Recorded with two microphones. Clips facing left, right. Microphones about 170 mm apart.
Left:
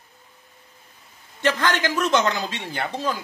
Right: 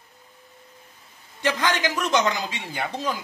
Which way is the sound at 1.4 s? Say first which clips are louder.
Left 2 dB; 15° right (ahead or behind).